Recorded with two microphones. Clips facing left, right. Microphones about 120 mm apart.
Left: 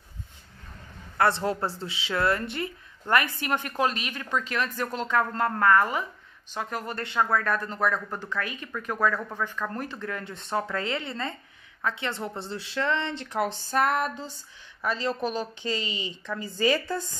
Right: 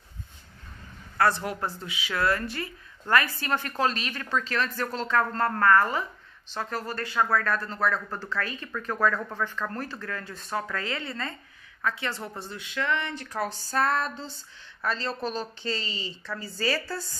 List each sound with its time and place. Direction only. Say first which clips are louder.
1.1 s speech: left 1 dB; 25° left (ahead or behind)